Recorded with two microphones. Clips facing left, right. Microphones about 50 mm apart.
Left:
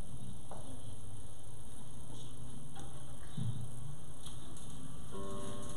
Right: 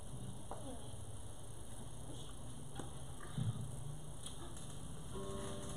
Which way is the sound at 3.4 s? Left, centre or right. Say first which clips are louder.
Left 1 dB; centre.